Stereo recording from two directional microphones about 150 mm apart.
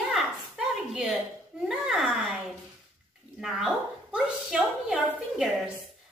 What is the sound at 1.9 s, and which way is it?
Speech, centre (ahead or behind).